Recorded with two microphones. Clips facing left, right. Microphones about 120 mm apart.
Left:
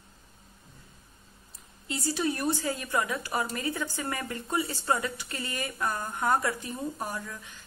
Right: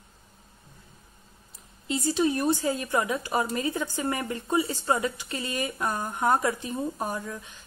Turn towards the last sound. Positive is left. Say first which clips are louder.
# right 4 dB
turn(degrees=-20)  # may be behind; listen again after turning